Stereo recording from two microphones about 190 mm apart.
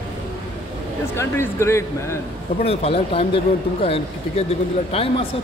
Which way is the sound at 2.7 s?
30° left (ahead or behind).